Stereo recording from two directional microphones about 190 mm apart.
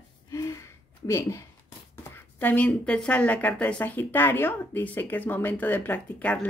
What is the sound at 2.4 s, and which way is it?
A woman's voice, 10° left (ahead or behind).